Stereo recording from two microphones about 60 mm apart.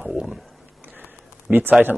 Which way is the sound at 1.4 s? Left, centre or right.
Right.